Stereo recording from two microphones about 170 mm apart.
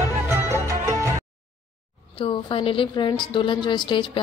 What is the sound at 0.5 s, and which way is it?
Music, 20° right (ahead or behind).